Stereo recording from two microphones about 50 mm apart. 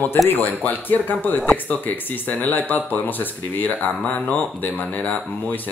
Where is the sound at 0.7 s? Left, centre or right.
Left.